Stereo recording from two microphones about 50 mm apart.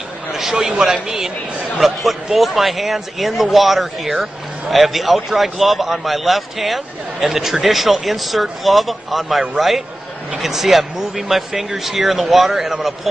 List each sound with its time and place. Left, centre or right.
0.3 s a man's voice: centre